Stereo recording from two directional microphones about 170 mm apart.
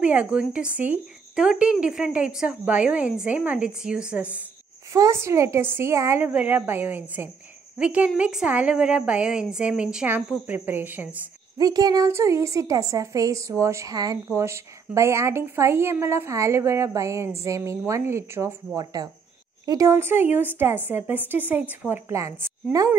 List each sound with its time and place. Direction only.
0.0 s a woman's voice: 5° right (ahead or behind)
4.9 s a woman's voice: 15° right (ahead or behind)
11.5 s a woman's voice: 20° right (ahead or behind)